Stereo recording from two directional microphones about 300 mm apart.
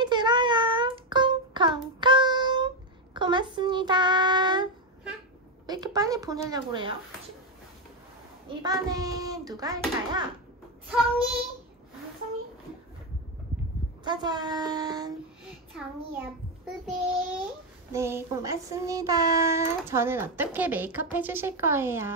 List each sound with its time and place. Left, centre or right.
0.0 s child singing: centre
5.7 s child singing: centre
8.6 s child singing: centre
14.0 s child singing: centre
15.4 s child singing: centre